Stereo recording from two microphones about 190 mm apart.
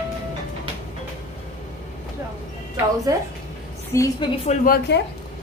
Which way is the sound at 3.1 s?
20° right (ahead or behind).